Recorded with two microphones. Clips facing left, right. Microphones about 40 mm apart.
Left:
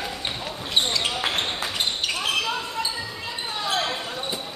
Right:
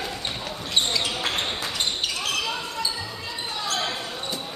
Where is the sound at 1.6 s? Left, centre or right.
Centre.